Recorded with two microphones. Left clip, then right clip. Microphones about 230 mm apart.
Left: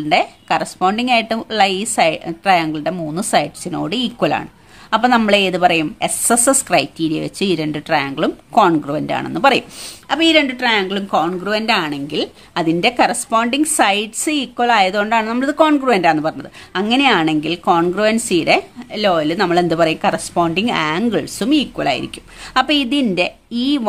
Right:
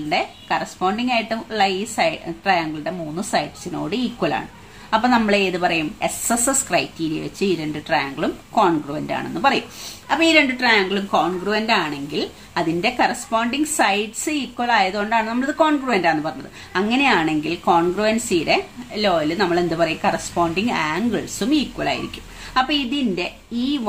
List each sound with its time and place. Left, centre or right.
0.1 s a woman's voice: left